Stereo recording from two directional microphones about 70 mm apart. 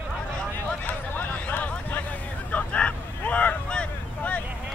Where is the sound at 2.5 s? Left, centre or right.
Left.